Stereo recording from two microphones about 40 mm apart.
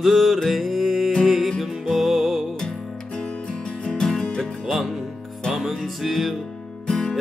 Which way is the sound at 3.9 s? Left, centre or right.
Centre.